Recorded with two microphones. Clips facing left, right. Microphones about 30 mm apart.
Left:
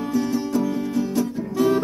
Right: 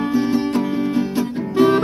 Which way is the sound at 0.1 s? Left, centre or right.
Right.